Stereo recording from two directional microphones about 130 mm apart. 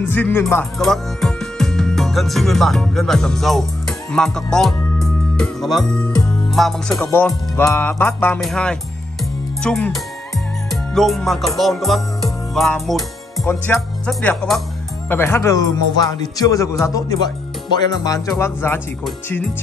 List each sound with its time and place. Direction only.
0.0 s speech: 15° left (ahead or behind)
0.7 s music: centre (ahead or behind)
7.0 s speech: 15° left (ahead or behind)
8.4 s speech: 5° left (ahead or behind)
9.2 s music: 5° left (ahead or behind)
13.7 s speech: 5° left (ahead or behind)
15.0 s speech: 15° left (ahead or behind)
18.4 s speech: 15° left (ahead or behind)